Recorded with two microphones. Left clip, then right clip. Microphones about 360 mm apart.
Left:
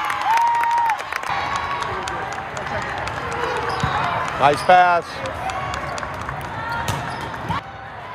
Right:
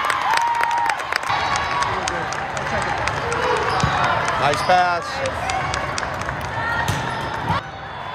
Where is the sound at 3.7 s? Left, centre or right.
Centre.